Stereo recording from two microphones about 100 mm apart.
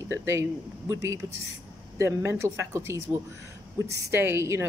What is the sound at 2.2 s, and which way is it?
A woman's voice, 25° right (ahead or behind).